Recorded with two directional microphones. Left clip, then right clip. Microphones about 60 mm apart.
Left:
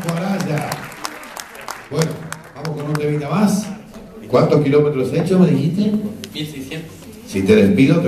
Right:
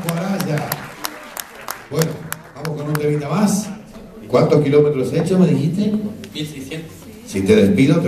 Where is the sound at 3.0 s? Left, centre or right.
Right.